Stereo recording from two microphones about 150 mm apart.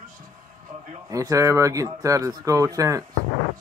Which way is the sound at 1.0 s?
20° right (ahead or behind).